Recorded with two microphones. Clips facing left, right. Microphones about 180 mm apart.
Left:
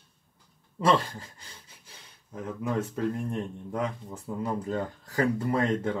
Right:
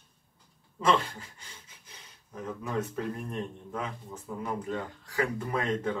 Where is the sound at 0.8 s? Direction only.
35° left (ahead or behind).